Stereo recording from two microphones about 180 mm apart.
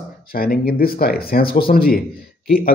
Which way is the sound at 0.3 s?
55° left (ahead or behind).